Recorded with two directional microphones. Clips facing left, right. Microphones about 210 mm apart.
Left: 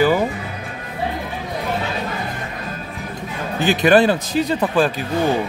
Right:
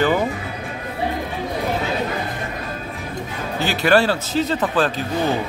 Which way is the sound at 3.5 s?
15° left (ahead or behind).